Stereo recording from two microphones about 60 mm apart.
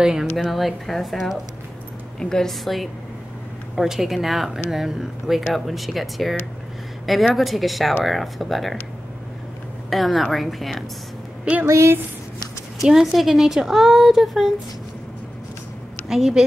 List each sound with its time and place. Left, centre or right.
0.0 s a woman's voice: centre
2.1 s a woman's voice: centre
2.6 s a woman's voice: centre
7.3 s a woman's voice: centre
9.8 s a woman's voice: centre
11.6 s a woman's voice: right
12.8 s a woman's voice: centre
16.1 s a woman's voice: centre